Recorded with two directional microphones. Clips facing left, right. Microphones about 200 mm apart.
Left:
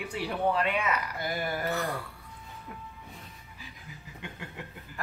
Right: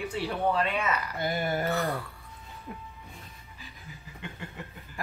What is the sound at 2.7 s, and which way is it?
Speech, 25° right (ahead or behind).